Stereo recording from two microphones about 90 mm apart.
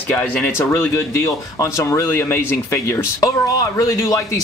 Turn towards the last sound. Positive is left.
turn(degrees=40)  # may be behind; listen again after turning